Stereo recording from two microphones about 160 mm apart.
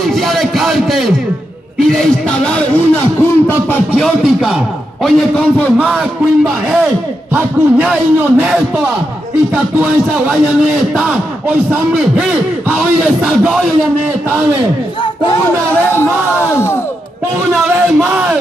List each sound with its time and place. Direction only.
0.0 s a sound: centre (ahead or behind)
1.8 s speech: 5° left (ahead or behind)
3.9 s speech: 5° right (ahead or behind)
5.6 s speech: centre (ahead or behind)
11.0 s speech: 5° right (ahead or behind)
15.9 s speech: 15° left (ahead or behind)
17.7 s speech: 15° right (ahead or behind)